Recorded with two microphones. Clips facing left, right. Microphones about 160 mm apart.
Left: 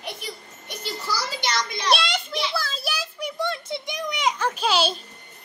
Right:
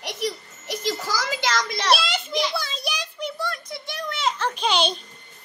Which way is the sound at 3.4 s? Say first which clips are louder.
Left 3 dB; 25° left (ahead or behind).